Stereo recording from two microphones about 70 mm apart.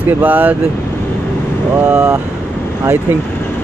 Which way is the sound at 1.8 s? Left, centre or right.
Centre.